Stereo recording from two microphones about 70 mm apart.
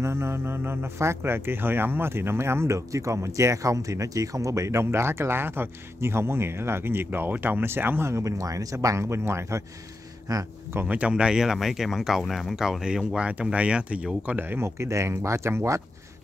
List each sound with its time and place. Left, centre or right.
0.0 s speech: right
8.1 s speech: right
10.3 s speech: right
10.9 s speech: centre
14.6 s speech: right